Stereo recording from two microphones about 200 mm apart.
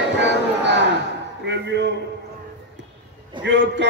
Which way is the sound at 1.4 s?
60° right (ahead or behind).